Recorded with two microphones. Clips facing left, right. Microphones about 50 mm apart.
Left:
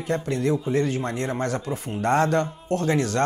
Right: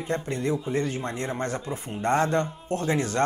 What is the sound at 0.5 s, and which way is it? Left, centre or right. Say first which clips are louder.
Speech: left 4 dB; centre.